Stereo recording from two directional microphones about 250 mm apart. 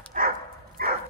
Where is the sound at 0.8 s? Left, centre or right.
Right.